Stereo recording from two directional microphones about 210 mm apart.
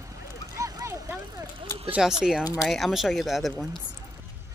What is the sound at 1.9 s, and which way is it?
Speech, centre (ahead or behind).